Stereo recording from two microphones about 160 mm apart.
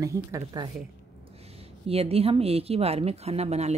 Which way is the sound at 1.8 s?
35° right (ahead or behind).